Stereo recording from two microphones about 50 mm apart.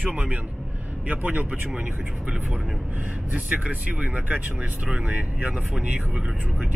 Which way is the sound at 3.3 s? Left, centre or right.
Right.